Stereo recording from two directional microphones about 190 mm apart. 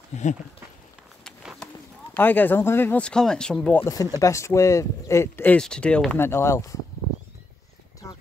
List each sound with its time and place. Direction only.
0.1 s speech: 40° left (ahead or behind)
1.2 s a sound: centre (ahead or behind)
2.1 s speech: 10° left (ahead or behind)